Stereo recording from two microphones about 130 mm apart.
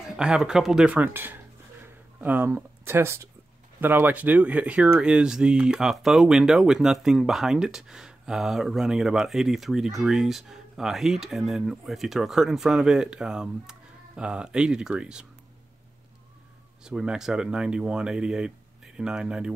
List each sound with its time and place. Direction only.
0.0 s speech: 5° right (ahead or behind)
16.8 s speech: 5° right (ahead or behind)